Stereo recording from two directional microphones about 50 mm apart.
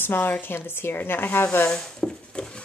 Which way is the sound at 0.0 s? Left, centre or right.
Left.